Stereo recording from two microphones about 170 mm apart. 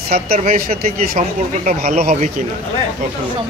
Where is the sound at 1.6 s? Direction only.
50° right (ahead or behind).